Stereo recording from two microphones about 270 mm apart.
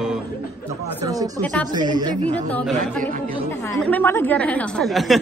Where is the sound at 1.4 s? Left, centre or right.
Centre.